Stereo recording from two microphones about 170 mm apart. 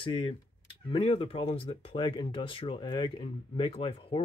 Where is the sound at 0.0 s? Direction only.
30° left (ahead or behind).